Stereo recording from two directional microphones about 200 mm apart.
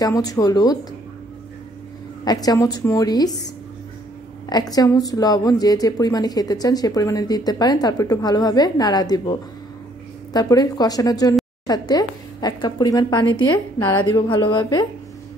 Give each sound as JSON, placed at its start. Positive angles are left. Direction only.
{"t": 0.0, "sound": "a woman's voice", "side_deg": 20}
{"t": 2.2, "sound": "a woman's voice", "side_deg": 20}
{"t": 4.5, "sound": "a woman's voice", "side_deg": 20}